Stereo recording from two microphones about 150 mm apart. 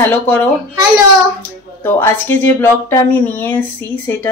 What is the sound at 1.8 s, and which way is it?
A woman's voice, 15° left (ahead or behind).